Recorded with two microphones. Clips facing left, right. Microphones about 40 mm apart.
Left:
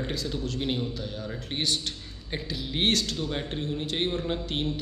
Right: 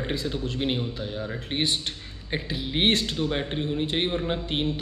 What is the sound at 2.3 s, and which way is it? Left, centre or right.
A man's voice, right.